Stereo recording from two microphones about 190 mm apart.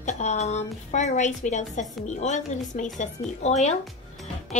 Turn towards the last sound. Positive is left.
turn(degrees=35)  # may be behind; listen again after turning